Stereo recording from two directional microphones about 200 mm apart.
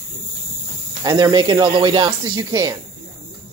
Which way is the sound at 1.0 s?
20° right (ahead or behind).